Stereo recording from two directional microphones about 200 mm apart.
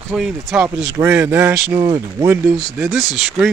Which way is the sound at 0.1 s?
5° right (ahead or behind).